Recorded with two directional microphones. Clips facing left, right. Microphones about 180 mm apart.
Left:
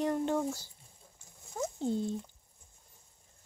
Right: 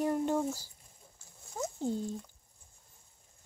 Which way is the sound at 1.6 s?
5° right (ahead or behind).